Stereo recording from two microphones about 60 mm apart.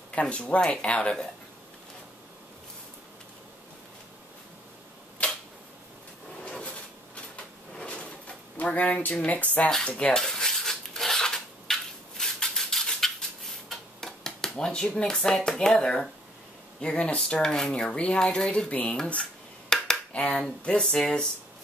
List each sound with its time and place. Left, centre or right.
0.1 s speech: centre
5.2 s camera: left
6.4 s drawer open or close: centre
9.8 s speech: left
10.1 s dishes: centre
13.7 s a sound: centre
14.6 s speech: centre
19.7 s a sound: centre
20.3 s speech: centre